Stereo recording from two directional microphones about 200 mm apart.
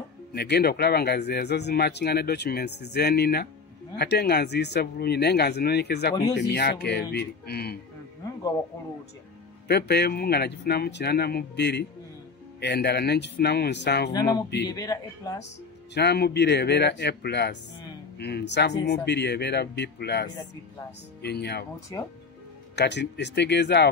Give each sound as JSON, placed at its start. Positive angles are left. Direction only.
{"t": 0.3, "sound": "speech", "side_deg": 50}
{"t": 9.7, "sound": "speech", "side_deg": 55}
{"t": 14.7, "sound": "a man's voice", "side_deg": 20}
{"t": 15.9, "sound": "speech", "side_deg": 55}
{"t": 22.8, "sound": "speech", "side_deg": 60}